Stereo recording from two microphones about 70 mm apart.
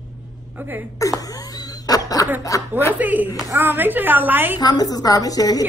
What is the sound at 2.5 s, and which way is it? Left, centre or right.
Speech, left.